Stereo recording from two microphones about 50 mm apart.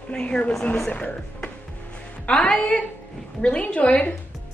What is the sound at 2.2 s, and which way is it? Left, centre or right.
Speech, centre.